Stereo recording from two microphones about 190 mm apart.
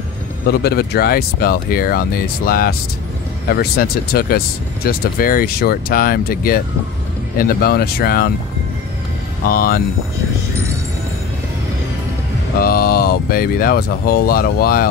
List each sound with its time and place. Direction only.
0.5 s speech: 55° left (ahead or behind)
9.5 s speech: 50° left (ahead or behind)
12.5 s speech: 50° left (ahead or behind)